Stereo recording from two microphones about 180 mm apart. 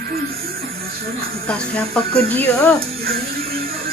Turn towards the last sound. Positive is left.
turn(degrees=-55)  # may be behind; listen again after turning